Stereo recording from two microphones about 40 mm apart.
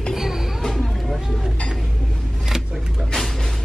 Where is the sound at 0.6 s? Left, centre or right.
Centre.